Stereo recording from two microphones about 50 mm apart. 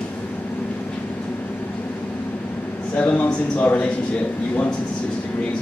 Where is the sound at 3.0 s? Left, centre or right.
Left.